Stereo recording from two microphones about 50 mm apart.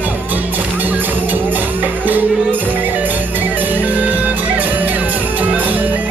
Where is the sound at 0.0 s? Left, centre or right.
Right.